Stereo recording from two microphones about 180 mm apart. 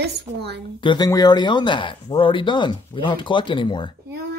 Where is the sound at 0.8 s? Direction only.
25° left (ahead or behind).